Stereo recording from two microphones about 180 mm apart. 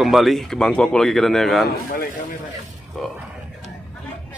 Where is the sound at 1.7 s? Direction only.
55° left (ahead or behind).